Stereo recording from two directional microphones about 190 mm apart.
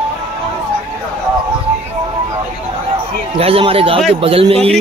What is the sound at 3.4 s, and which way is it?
A man's voice, 30° right (ahead or behind).